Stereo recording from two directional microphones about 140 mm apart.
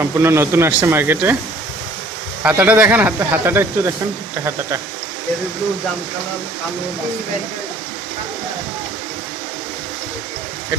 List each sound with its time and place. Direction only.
0.0 s speech: 20° right (ahead or behind)
2.4 s speech: 10° right (ahead or behind)